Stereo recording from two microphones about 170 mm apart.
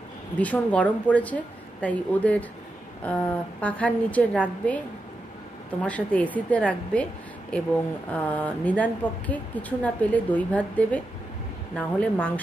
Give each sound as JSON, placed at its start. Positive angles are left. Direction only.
{"t": 0.4, "sound": "speech", "side_deg": 10}
{"t": 8.1, "sound": "speech", "side_deg": 10}